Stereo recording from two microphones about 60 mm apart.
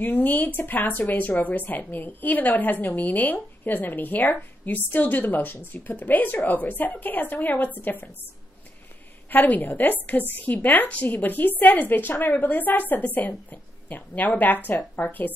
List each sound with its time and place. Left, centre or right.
0.0 s a woman's voice: left
9.3 s a woman's voice: left